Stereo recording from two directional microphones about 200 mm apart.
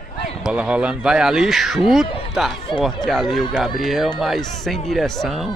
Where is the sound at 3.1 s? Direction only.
Centre (ahead or behind).